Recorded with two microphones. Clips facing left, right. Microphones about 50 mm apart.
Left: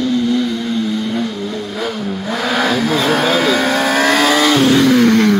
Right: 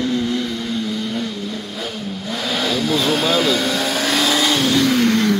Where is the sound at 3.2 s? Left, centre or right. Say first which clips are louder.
Left 3 dB; left.